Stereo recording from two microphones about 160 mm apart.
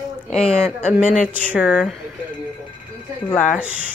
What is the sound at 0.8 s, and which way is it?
Speech, 5° right (ahead or behind).